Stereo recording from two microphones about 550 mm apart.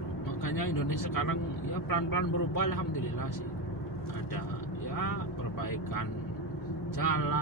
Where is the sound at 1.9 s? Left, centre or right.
Left.